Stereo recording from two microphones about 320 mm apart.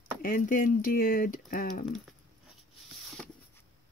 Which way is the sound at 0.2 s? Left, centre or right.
Left.